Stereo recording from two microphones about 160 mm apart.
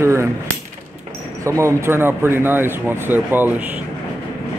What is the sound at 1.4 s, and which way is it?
Speech, 20° right (ahead or behind).